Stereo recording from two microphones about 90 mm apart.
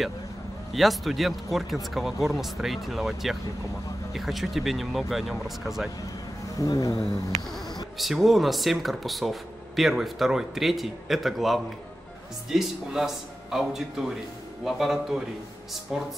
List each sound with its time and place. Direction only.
0.7 s speech: centre (ahead or behind)
6.5 s speech: 40° left (ahead or behind)
8.0 s speech: centre (ahead or behind)